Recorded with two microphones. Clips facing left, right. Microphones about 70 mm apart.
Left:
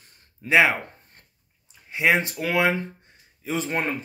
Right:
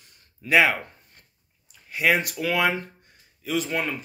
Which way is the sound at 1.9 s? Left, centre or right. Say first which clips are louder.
Left 1 dB; left.